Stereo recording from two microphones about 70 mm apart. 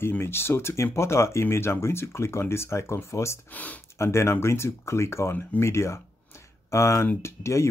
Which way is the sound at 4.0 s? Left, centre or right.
Left.